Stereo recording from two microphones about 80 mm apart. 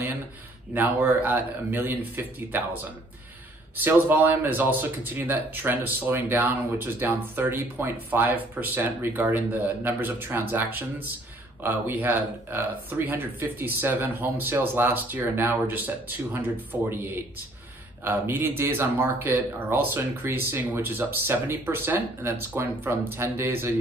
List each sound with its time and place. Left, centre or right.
0.7 s speech: right
3.7 s speech: right